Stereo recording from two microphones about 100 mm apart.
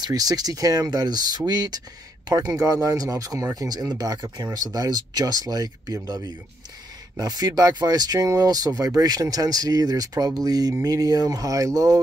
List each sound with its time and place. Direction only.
0.0 s speech: 40° right (ahead or behind)